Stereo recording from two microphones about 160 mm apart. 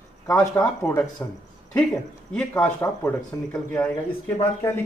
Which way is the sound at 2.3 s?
5° left (ahead or behind).